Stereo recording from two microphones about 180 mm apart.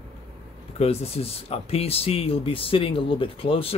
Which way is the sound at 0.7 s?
35° left (ahead or behind).